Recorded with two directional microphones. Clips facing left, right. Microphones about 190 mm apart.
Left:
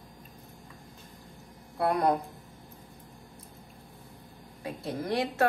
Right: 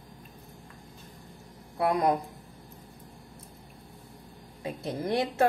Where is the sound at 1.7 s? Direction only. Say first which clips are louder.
Right 1 dB; 15° right (ahead or behind).